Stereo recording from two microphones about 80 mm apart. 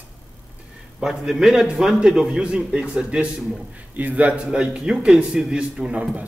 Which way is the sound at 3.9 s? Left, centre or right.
Centre.